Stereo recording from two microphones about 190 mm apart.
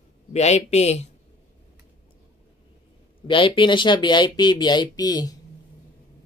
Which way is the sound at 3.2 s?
25° left (ahead or behind).